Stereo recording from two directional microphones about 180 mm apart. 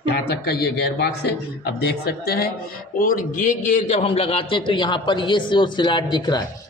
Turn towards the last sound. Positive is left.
turn(degrees=25)  # may be behind; listen again after turning